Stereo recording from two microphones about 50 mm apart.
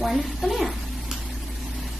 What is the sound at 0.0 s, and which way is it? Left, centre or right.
Speech, centre.